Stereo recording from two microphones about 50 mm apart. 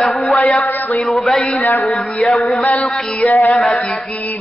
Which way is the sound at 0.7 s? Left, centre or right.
Left.